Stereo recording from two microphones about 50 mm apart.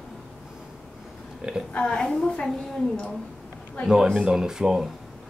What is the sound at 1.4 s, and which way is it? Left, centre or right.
Speech, right.